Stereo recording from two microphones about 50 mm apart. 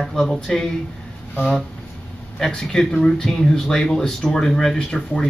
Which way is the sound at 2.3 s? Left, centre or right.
Centre.